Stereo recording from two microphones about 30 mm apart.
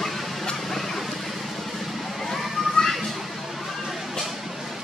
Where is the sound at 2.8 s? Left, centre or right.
Left.